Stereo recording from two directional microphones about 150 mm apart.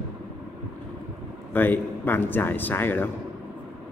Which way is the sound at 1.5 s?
15° left (ahead or behind).